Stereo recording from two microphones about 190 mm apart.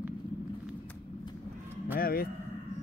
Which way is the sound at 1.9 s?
50° left (ahead or behind).